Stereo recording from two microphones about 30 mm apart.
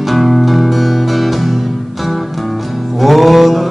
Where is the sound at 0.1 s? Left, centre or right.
Centre.